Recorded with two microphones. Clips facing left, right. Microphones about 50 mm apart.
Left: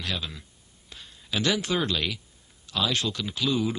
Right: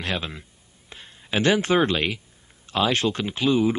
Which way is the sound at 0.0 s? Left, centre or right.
Right.